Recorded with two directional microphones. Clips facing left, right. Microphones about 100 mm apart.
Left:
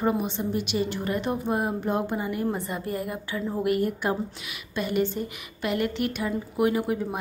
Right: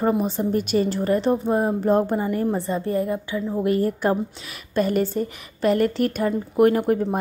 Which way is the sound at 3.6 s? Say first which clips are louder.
Right 4 dB; 35° right (ahead or behind).